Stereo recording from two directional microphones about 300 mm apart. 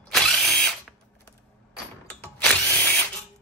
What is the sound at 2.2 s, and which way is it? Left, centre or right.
Drill, centre.